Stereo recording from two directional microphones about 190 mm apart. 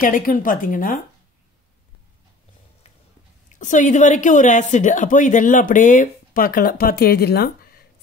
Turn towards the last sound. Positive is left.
turn(degrees=55)  # may be behind; listen again after turning